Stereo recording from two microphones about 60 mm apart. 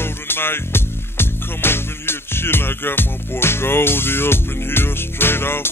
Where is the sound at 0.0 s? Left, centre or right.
Left.